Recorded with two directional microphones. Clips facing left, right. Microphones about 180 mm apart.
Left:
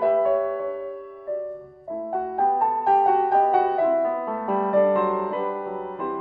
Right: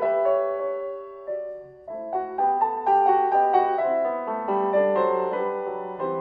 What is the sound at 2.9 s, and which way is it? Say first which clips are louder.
Music: even; centre (ahead or behind).